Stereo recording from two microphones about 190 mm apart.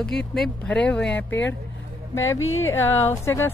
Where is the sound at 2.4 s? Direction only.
90° left.